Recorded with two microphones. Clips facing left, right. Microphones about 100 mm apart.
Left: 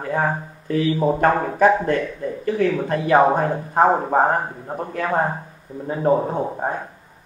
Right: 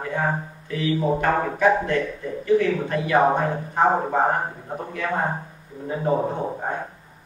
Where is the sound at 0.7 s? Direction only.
45° left (ahead or behind).